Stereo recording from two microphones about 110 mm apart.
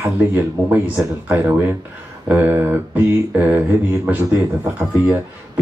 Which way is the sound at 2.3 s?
15° right (ahead or behind).